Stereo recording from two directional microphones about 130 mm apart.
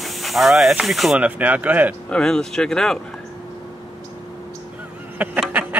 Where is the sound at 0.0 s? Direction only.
Centre (ahead or behind).